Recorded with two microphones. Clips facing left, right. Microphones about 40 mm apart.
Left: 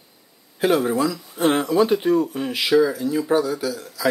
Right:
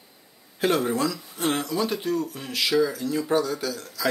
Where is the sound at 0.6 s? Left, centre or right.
Centre.